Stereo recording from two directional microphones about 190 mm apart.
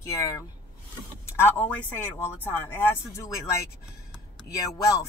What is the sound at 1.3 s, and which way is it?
Speech, 10° left (ahead or behind).